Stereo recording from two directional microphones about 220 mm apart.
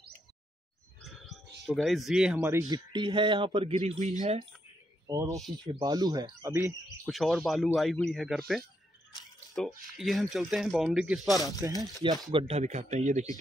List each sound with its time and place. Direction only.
1.0 s speech: centre (ahead or behind); by 4.5 s 30° right (ahead or behind)
5.0 s speech: 15° right (ahead or behind)
7.1 s speech: centre (ahead or behind)
11.6 s a man's voice: 15° right (ahead or behind); by 13.3 s 30° right (ahead or behind)